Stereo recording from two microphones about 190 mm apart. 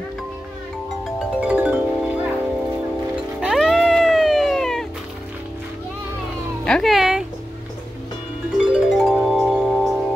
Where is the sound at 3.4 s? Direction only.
Centre (ahead or behind).